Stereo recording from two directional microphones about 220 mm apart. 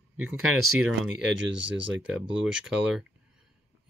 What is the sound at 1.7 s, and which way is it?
Speech, centre (ahead or behind).